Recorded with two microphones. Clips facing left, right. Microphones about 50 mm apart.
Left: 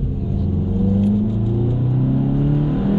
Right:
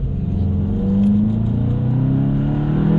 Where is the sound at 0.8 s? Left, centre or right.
Centre.